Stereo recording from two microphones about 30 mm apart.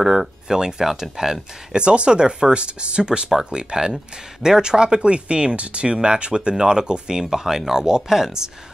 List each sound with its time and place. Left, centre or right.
0.0 s speech: centre
1.8 s speech: right
6.5 s speech: centre